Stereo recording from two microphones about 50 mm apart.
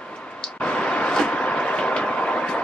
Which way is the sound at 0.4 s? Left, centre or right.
Left.